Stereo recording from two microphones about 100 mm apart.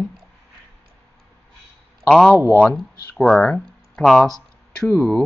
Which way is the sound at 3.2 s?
5° left (ahead or behind).